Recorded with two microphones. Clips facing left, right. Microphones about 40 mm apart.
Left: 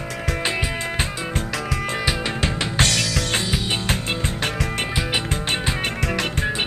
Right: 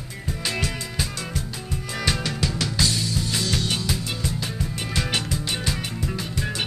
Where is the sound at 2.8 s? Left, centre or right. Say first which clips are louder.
Left 4 dB; left.